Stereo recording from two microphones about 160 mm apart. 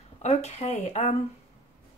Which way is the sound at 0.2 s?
45° left (ahead or behind).